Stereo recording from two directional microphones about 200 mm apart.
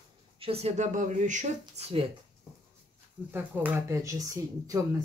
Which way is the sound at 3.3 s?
10° right (ahead or behind).